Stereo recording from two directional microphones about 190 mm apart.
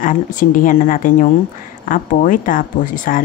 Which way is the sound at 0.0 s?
45° left (ahead or behind).